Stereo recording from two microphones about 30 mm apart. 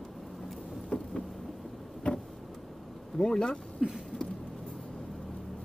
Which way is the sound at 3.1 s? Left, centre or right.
Left.